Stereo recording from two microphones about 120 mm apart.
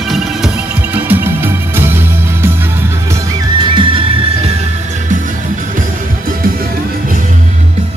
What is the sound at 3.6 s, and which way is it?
Music, 45° right (ahead or behind).